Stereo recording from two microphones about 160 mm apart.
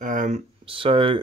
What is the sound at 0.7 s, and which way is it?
Speech, 35° right (ahead or behind).